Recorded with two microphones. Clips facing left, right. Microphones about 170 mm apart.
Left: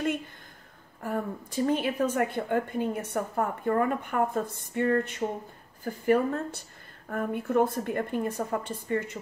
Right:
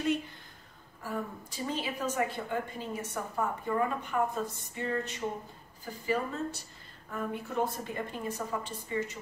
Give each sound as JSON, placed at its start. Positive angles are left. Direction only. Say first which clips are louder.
{"t": 1.0, "sound": "a woman's voice", "louder": "left 5 dB", "side_deg": 55}